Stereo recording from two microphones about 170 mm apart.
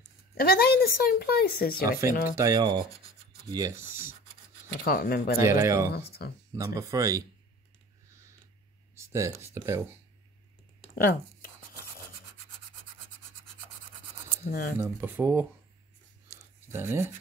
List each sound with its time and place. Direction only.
0.3 s speech: 65° left (ahead or behind)
1.9 s speech: 15° right (ahead or behind)
4.7 s speech: 60° left (ahead or behind)
5.4 s speech: 15° right (ahead or behind)
5.9 s speech: 70° left (ahead or behind)
6.5 s speech: 20° right (ahead or behind)
8.9 s speech: 15° right (ahead or behind)
11.0 s speech: 60° left (ahead or behind)
14.4 s speech: 55° left (ahead or behind)
14.8 s speech: 10° right (ahead or behind)
16.3 s a sound: 15° right (ahead or behind)